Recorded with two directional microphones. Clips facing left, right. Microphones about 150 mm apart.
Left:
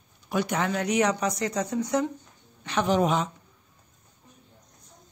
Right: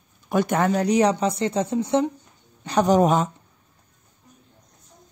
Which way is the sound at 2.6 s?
40° right (ahead or behind).